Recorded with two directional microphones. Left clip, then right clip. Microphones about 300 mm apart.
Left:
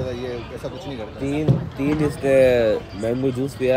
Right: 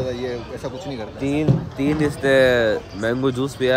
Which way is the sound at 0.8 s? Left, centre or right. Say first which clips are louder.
Right 2 dB; right.